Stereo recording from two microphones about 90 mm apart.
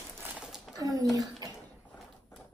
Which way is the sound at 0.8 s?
40° right (ahead or behind).